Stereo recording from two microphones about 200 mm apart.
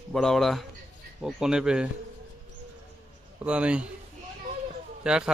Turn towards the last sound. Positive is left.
turn(degrees=-5)  # may be behind; listen again after turning